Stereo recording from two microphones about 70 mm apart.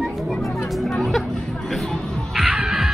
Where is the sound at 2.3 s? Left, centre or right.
Centre.